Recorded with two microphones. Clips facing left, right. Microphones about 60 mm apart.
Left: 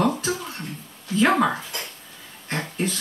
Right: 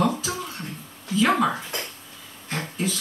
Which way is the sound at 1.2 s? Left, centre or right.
Left.